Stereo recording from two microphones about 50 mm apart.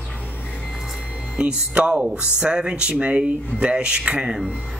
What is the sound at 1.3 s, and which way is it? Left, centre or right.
Speech, right.